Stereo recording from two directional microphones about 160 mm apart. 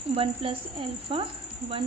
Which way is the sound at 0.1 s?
35° right (ahead or behind).